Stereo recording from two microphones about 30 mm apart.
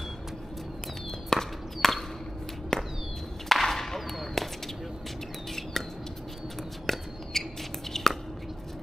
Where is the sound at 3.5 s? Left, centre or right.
Centre.